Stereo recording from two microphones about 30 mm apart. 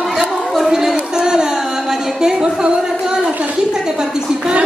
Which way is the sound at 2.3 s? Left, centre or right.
Right.